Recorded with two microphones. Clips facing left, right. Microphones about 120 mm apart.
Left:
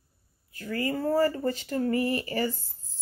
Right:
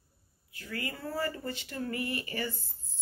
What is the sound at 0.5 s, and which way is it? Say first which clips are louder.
A child's voice: left 9 dB; 45° left (ahead or behind).